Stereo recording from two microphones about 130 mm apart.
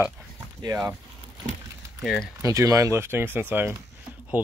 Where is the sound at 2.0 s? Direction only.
Centre (ahead or behind).